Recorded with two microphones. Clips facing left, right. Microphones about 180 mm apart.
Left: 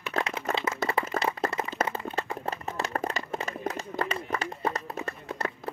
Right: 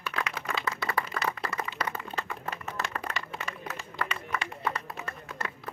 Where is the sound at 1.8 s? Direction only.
30° left (ahead or behind).